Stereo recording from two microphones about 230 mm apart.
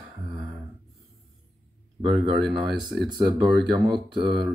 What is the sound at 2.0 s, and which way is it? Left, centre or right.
Speech, centre.